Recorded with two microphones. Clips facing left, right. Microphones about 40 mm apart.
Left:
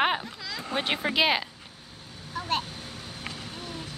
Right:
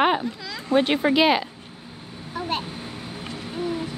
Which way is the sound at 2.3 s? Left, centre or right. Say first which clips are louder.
Right 2 dB; centre.